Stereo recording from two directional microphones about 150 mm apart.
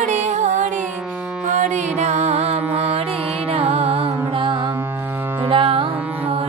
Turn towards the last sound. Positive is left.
turn(degrees=-35)  # may be behind; listen again after turning